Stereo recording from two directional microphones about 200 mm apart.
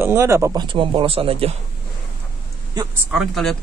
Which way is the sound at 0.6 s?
25° right (ahead or behind).